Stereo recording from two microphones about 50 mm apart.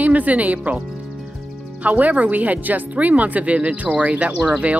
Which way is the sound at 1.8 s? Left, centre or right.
Right.